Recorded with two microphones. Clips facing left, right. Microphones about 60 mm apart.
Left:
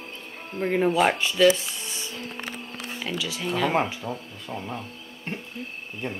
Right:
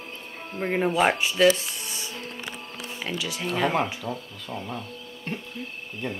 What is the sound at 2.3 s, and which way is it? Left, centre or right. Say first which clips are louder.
Music: left 1 dB; left.